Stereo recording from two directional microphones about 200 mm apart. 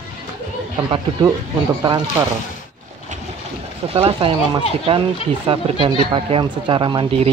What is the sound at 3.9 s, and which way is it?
Speech, 30° right (ahead or behind).